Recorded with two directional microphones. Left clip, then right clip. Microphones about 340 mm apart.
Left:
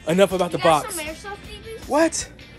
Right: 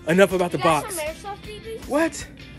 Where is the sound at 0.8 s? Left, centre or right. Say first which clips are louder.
Left 1 dB; centre.